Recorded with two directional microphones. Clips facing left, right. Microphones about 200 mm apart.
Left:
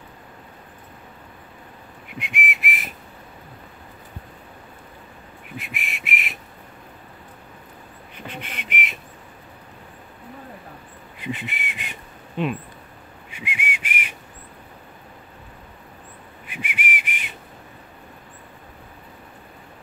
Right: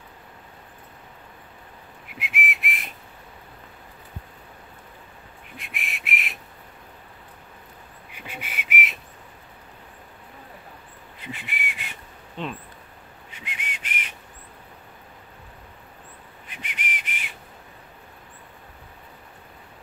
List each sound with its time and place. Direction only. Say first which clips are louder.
2.0 s whistle: left 2 dB; centre (ahead or behind)
5.6 s whistle: left 3 dB; centre (ahead or behind)
8.3 s whistling: left 1 dB; 10° right (ahead or behind)
11.1 s whistling: left 7 dB; 20° left (ahead or behind)
13.3 s a sound: left 7 dB; 10° left (ahead or behind)
16.4 s whistle: left 6 dB; 10° left (ahead or behind)